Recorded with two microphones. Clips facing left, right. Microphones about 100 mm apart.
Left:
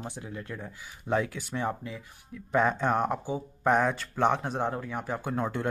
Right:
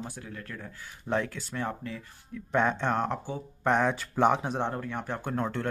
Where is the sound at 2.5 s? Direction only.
5° left (ahead or behind).